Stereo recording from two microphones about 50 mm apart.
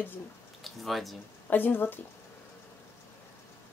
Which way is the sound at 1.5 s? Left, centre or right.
Left.